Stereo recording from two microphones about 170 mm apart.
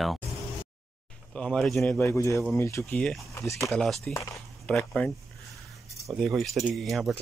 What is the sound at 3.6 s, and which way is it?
Speech, centre (ahead or behind).